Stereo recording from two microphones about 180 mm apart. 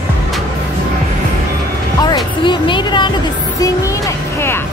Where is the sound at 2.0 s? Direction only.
25° left (ahead or behind).